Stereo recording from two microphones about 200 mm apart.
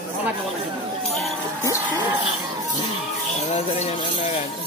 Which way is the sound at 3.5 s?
35° left (ahead or behind).